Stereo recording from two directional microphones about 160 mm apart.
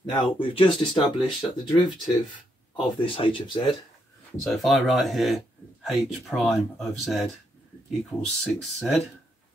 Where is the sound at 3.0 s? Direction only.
35° left (ahead or behind).